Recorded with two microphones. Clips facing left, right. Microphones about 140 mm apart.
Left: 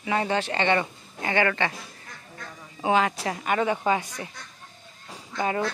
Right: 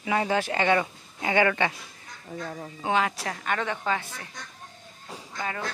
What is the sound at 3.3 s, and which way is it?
Speech, 10° left (ahead or behind).